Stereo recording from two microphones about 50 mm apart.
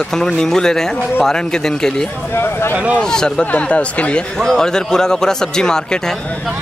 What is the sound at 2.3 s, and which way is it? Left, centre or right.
Speech, left.